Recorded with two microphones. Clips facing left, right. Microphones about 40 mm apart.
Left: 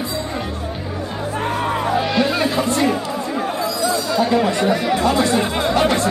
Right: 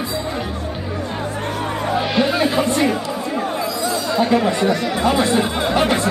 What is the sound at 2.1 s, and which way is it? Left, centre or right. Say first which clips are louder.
Music: right 1 dB; centre.